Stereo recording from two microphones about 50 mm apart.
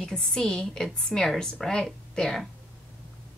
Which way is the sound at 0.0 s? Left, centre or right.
Centre.